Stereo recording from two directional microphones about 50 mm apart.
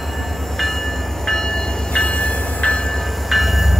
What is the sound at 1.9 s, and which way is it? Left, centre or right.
Train, left.